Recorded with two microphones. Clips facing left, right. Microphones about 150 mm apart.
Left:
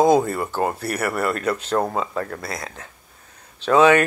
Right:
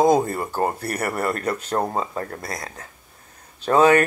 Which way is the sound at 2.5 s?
40° right (ahead or behind).